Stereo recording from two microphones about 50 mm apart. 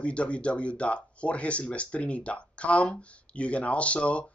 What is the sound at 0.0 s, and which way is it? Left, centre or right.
Speech, left.